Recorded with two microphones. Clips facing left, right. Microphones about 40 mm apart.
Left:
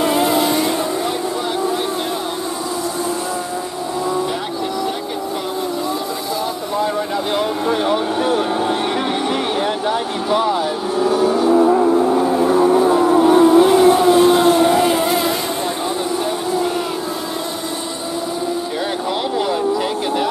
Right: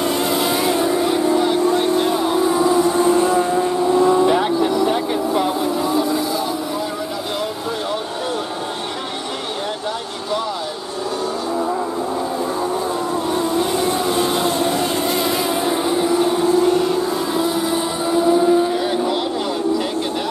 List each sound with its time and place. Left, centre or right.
0.2 s vehicle: centre
12.5 s vehicle: left
13.7 s vehicle: centre